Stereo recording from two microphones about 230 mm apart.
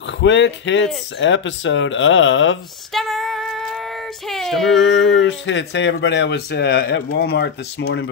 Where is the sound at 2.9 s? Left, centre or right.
Centre.